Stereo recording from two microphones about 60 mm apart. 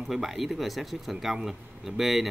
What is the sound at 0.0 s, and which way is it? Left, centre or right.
Speech, centre.